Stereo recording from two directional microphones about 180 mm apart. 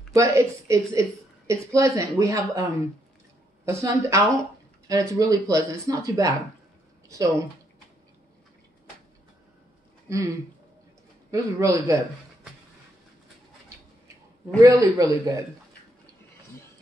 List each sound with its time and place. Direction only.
0.1 s speech: 15° right (ahead or behind)
3.6 s speech: 15° right (ahead or behind)
10.0 s speech: 15° right (ahead or behind)
11.3 s speech: 15° right (ahead or behind)
14.6 s speech: 15° right (ahead or behind)